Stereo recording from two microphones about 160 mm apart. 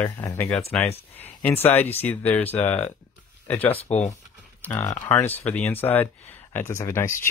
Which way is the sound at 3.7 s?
45° left (ahead or behind).